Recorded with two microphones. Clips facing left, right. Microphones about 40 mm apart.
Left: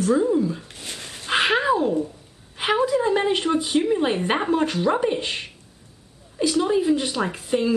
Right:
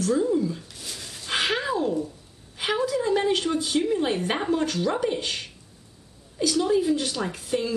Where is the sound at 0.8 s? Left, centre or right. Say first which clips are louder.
Left 3 dB; left.